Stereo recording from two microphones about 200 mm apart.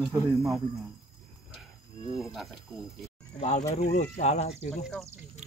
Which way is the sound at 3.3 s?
35° left (ahead or behind).